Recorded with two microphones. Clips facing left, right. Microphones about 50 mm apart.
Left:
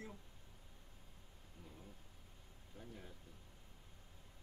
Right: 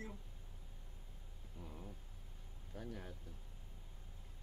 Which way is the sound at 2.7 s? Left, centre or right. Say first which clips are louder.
Right 6 dB; right.